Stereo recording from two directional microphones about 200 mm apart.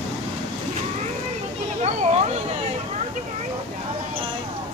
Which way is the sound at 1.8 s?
35° right (ahead or behind).